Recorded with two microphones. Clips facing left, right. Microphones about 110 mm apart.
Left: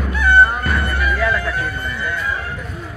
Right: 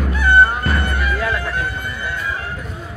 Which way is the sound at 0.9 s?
25° right (ahead or behind).